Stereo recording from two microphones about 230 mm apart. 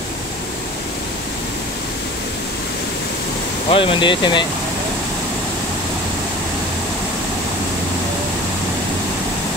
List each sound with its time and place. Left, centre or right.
3.7 s speech: left